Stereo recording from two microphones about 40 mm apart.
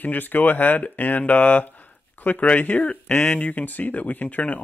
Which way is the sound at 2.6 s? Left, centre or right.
Left.